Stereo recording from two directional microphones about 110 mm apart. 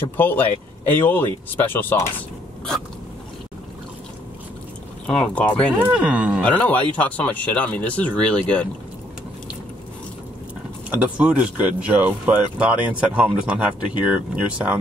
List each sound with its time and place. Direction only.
0.2 s speech: 20° left (ahead or behind)
5.0 s speech: 5° left (ahead or behind)
5.8 s speech: 15° right (ahead or behind)
6.4 s speech: 15° left (ahead or behind)
10.9 s speech: 10° right (ahead or behind)